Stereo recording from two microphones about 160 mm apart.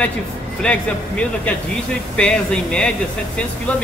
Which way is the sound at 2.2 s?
5° left (ahead or behind).